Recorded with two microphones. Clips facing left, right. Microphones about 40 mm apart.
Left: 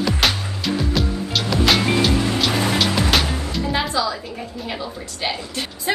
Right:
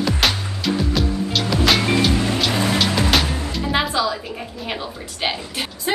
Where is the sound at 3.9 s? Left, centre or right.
Right.